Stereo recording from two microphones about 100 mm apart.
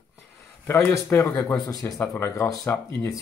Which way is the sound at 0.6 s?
25° left (ahead or behind).